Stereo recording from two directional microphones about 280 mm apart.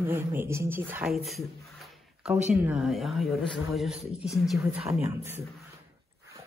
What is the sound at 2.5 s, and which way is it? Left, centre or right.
Speech, centre.